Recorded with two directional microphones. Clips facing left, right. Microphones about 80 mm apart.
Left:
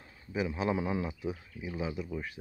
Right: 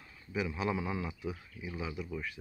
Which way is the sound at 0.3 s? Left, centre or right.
Left.